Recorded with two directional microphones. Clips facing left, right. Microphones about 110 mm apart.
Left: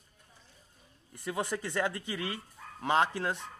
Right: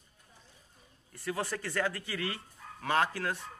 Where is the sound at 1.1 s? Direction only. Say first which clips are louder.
Left 1 dB; 20° left (ahead or behind).